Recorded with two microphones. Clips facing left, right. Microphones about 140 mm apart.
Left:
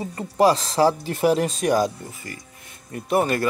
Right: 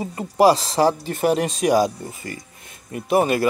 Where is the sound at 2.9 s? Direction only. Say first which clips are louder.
Right 3 dB; 10° right (ahead or behind).